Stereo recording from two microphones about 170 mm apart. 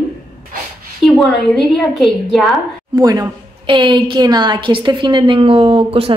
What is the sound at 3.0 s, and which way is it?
A woman's voice, 20° right (ahead or behind).